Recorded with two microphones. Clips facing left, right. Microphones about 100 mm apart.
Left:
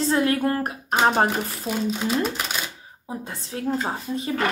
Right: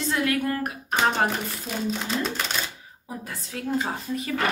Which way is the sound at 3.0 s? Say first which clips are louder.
Left 3 dB; 30° left (ahead or behind).